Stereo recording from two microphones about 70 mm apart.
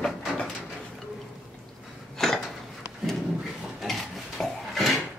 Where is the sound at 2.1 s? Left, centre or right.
Centre.